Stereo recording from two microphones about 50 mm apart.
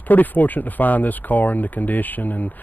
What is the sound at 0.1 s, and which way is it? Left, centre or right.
Speech, left.